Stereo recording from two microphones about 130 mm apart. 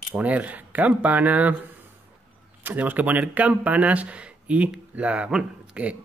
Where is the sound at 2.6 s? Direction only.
15° right (ahead or behind).